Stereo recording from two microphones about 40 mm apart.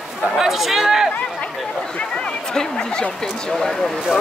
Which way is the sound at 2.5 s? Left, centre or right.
Centre.